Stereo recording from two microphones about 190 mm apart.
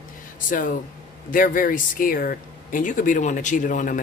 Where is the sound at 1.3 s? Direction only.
45° left (ahead or behind).